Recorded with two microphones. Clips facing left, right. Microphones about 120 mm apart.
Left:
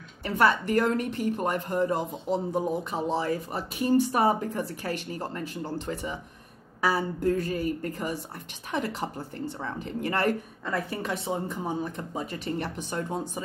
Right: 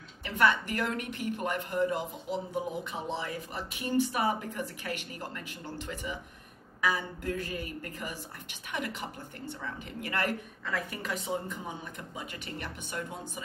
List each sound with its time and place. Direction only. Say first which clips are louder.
0.2 s a woman's voice: left 3 dB; 40° left (ahead or behind)